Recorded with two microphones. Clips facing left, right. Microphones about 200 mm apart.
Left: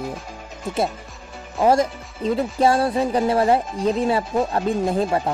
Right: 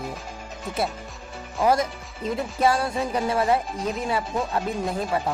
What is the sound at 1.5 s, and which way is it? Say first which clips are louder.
Speech: left 4 dB; 30° left (ahead or behind).